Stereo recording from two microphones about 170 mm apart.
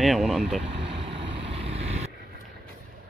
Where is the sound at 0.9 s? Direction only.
30° right (ahead or behind).